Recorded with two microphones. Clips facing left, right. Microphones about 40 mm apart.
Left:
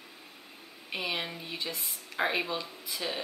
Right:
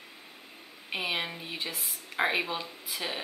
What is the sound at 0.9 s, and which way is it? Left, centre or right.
Speech, centre.